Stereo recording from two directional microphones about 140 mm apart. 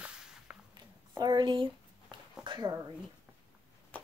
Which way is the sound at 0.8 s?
30° right (ahead or behind).